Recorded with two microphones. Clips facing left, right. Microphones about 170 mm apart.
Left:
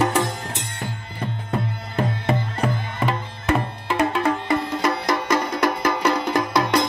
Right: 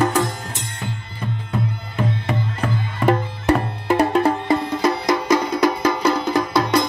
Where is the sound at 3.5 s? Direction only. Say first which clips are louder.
Right 4 dB; 40° right (ahead or behind).